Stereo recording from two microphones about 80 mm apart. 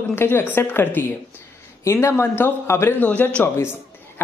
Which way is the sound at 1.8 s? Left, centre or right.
Left.